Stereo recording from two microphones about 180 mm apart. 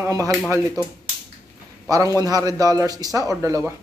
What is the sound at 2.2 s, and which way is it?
Speech, 20° right (ahead or behind).